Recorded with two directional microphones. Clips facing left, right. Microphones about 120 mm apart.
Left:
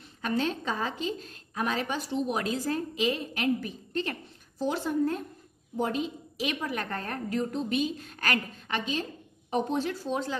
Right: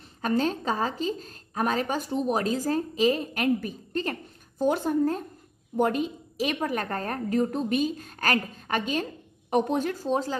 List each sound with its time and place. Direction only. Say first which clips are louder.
0.2 s a woman's voice: right 4 dB; 40° right (ahead or behind)
5.8 s a woman's voice: right 5 dB; 55° right (ahead or behind)
9.5 s a woman's voice: right 4 dB; 60° right (ahead or behind); by 10.3 s 40° right (ahead or behind)